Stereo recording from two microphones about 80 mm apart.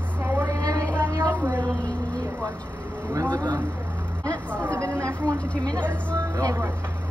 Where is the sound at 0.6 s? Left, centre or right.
Right.